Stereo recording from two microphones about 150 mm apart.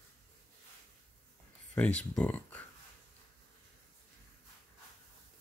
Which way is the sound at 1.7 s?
10° left (ahead or behind).